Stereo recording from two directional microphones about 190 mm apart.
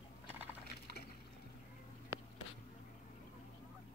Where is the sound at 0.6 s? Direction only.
55° left (ahead or behind).